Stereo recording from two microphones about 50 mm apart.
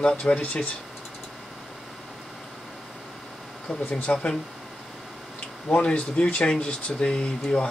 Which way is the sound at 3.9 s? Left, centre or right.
Left.